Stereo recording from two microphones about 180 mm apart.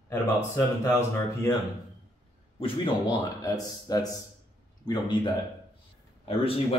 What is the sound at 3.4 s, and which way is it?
Speech, 20° left (ahead or behind).